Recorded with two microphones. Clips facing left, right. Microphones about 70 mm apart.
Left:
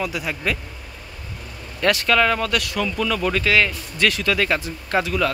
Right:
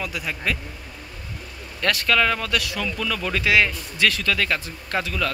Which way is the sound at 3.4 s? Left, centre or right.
Centre.